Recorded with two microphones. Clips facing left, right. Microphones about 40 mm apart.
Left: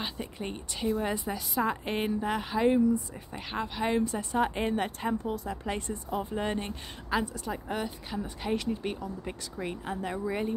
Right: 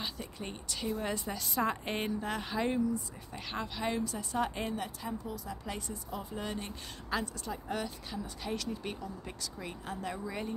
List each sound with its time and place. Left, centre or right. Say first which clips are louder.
0.0 s a woman's voice: left 4 dB; left
4.7 s speech: left 8 dB; left
7.1 s a woman's voice: left 5 dB; centre